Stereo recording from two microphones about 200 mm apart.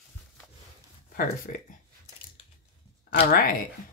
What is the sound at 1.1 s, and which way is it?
Speech, 45° left (ahead or behind).